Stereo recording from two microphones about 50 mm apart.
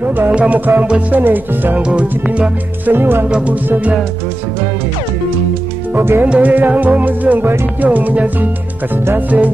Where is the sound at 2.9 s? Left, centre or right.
Right.